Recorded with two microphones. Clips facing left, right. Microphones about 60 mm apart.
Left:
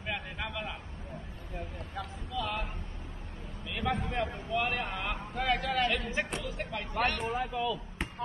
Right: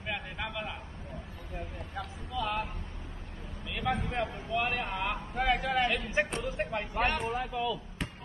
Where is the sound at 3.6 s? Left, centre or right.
Centre.